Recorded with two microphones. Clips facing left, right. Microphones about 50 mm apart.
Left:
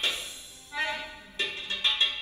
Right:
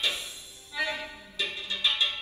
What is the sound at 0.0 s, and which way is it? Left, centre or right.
Music, left.